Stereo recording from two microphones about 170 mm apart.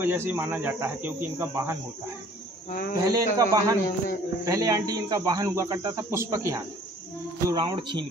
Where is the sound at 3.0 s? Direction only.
20° right (ahead or behind).